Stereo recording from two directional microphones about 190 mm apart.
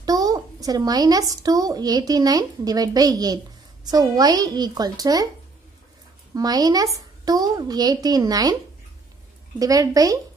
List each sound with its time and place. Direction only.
0.0 s speech: 20° right (ahead or behind)
6.3 s speech: 20° right (ahead or behind)
9.6 s speech: 20° right (ahead or behind)